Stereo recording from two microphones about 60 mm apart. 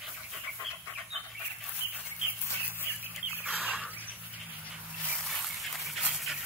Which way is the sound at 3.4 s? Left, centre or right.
Right.